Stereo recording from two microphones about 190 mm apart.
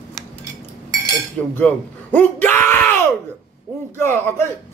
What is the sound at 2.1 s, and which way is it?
A man's voice, 10° left (ahead or behind).